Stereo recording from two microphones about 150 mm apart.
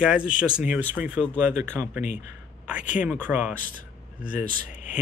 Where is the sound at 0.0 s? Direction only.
5° right (ahead or behind).